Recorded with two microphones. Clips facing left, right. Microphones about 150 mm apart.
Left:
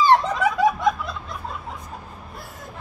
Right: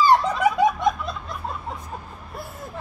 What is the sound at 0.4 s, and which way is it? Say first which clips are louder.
Snicker: right 1 dB; 20° right (ahead or behind).